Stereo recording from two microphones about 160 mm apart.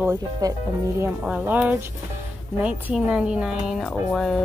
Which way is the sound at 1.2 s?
10° right (ahead or behind).